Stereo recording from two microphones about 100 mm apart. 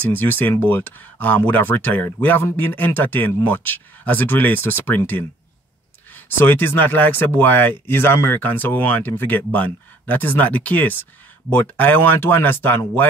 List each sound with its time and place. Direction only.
0.0 s speech: 20° left (ahead or behind)